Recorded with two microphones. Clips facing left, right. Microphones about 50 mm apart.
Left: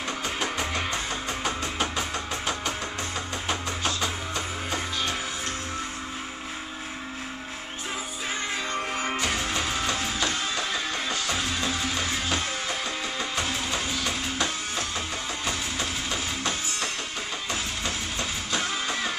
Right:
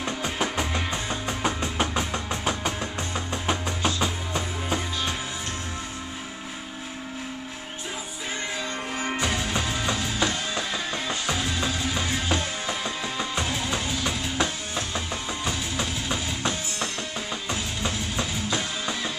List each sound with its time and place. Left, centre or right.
0.2 s music: centre
1.4 s a sound: centre
3.4 s music: centre
9.2 s music: right